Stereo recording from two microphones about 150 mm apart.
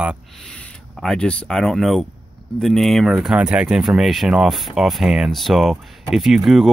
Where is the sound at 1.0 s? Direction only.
5° left (ahead or behind).